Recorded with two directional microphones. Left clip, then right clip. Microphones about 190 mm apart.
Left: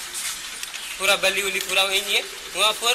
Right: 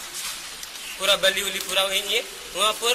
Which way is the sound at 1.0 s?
15° right (ahead or behind).